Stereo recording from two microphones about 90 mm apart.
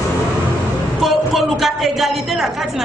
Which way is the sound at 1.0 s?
Centre (ahead or behind).